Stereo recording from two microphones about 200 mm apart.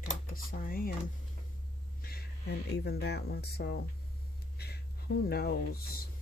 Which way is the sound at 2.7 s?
55° left (ahead or behind).